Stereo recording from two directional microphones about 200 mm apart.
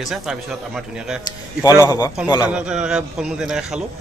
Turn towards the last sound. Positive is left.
turn(degrees=-5)  # may be behind; listen again after turning